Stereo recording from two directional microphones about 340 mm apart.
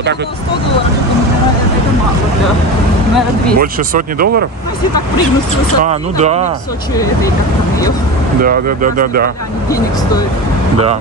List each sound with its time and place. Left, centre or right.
3.5 s speech: right
5.9 s speech: centre
8.4 s speech: right